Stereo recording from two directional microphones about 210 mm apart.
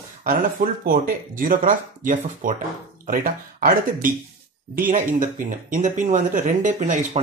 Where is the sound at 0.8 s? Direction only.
40° right (ahead or behind).